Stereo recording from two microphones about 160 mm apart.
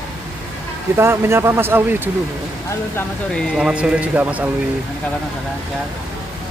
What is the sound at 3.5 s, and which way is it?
Speech, 5° right (ahead or behind).